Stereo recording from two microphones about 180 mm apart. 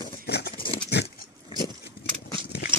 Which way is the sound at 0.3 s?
65° left (ahead or behind).